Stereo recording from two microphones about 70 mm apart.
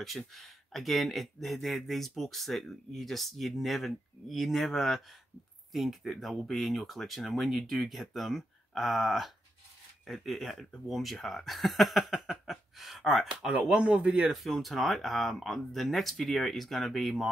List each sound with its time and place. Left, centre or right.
0.0 s speech: centre
13.5 s speech: centre
14.3 s speech: centre